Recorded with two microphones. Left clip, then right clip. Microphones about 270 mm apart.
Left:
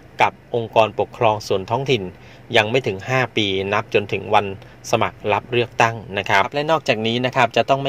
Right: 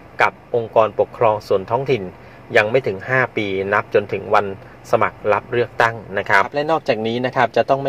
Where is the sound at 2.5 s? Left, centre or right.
Left.